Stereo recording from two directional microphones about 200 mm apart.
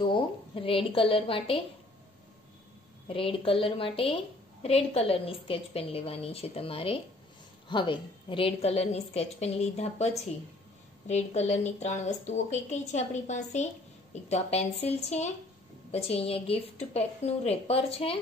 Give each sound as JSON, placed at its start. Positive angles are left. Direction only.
{"t": 0.0, "sound": "a woman's voice", "side_deg": 25}
{"t": 3.1, "sound": "a woman's voice", "side_deg": 25}